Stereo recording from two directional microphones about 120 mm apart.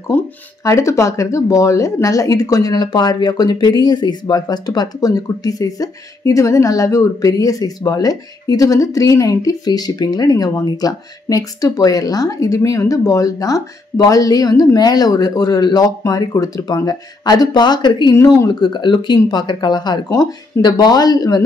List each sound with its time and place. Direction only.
0.1 s speech: 15° left (ahead or behind); by 21.4 s 35° left (ahead or behind)